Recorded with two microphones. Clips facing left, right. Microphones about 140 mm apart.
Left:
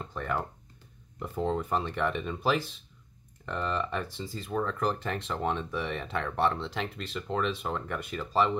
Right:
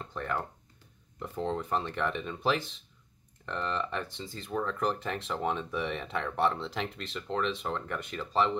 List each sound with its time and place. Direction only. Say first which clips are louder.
0.0 s speech: left 2 dB; 5° left (ahead or behind)